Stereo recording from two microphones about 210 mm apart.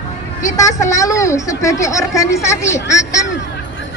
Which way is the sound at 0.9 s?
15° left (ahead or behind).